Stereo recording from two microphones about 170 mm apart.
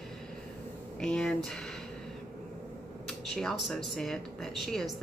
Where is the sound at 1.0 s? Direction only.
5° left (ahead or behind).